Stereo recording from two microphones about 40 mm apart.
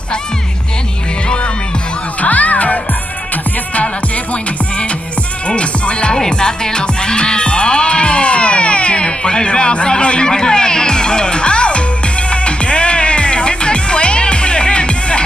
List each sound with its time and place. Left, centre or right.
2.1 s music: left
5.5 s speech: left
6.1 s music: centre